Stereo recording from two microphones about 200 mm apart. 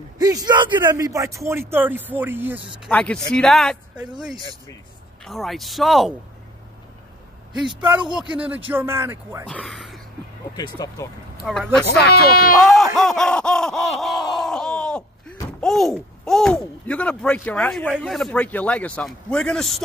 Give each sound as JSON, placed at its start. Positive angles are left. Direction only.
{"t": 0.2, "sound": "speech", "side_deg": -20}
{"t": 2.9, "sound": "speech", "side_deg": 5}
{"t": 5.2, "sound": "speech", "side_deg": 0}
{"t": 8.2, "sound": "speech", "side_deg": -5}
{"t": 9.5, "sound": "speech", "side_deg": 5}
{"t": 10.5, "sound": "speech", "side_deg": 20}
{"t": 11.4, "sound": "speech", "side_deg": 0}
{"t": 11.8, "sound": "speech", "side_deg": 50}
{"t": 12.5, "sound": "laughter", "side_deg": 0}
{"t": 15.6, "sound": "speech", "side_deg": 0}